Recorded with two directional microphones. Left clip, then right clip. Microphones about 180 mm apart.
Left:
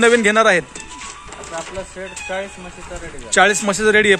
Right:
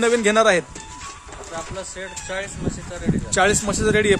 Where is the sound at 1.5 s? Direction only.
20° right (ahead or behind).